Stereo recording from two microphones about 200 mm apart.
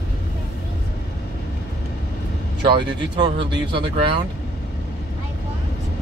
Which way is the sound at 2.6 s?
25° right (ahead or behind).